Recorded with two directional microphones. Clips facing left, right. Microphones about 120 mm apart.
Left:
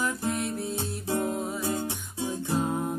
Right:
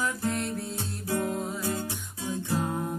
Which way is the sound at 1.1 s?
20° left (ahead or behind).